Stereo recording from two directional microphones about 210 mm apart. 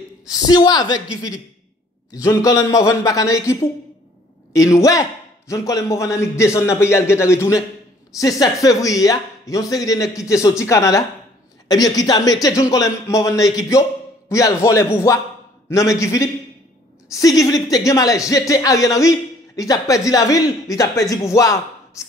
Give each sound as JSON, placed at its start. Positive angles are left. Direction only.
{"t": 0.5, "sound": "a woman's voice", "side_deg": 20}